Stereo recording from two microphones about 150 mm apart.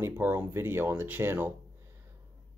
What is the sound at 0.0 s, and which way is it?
Speech, 15° right (ahead or behind).